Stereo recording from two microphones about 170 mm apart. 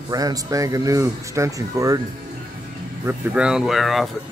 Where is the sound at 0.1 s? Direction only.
20° right (ahead or behind).